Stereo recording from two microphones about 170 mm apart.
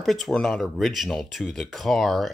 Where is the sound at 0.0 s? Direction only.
Centre (ahead or behind).